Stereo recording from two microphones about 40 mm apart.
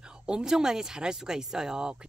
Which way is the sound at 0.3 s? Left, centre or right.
Centre.